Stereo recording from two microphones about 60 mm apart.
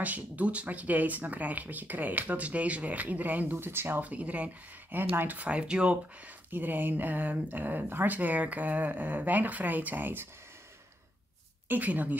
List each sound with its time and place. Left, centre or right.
0.0 s speech: right
4.0 s speech: right
4.9 s speech: right; by 5.9 s centre
6.5 s speech: right
11.7 s speech: right